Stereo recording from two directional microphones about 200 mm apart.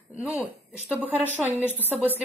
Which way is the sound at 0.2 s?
5° right (ahead or behind).